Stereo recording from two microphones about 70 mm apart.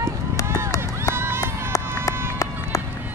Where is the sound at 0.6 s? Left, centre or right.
Left.